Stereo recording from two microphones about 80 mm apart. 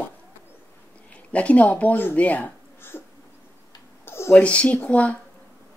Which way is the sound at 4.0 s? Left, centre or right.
Left.